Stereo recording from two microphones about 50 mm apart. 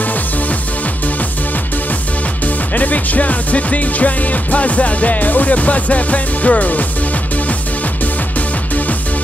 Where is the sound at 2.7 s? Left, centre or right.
Left.